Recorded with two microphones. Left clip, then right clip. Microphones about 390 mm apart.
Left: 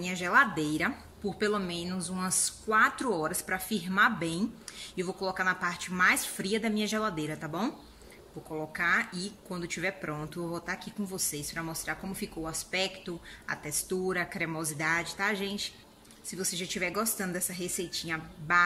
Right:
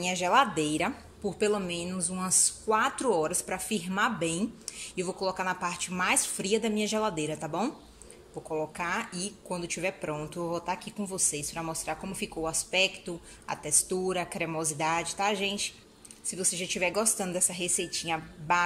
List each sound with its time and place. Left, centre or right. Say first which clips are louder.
0.0 s a woman's voice: right 1 dB; centre
8.7 s a woman's voice: left 4 dB; centre